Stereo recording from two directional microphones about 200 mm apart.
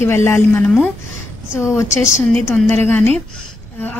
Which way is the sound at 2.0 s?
5° right (ahead or behind).